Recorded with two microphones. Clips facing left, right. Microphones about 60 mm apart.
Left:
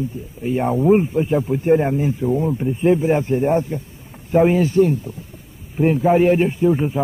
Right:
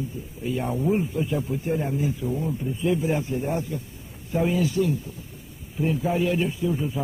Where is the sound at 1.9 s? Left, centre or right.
Left.